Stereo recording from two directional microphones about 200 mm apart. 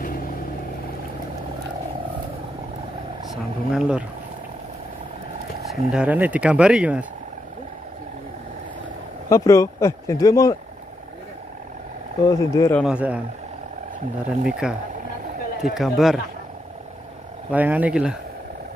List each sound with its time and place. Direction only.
3.3 s speech: 5° right (ahead or behind)
5.7 s speech: 5° right (ahead or behind)
9.3 s speech: 15° left (ahead or behind)
12.3 s speech: 15° left (ahead or behind)
12.8 s speech: 5° right (ahead or behind)
14.4 s speech: 5° right (ahead or behind)
17.5 s speech: 10° right (ahead or behind)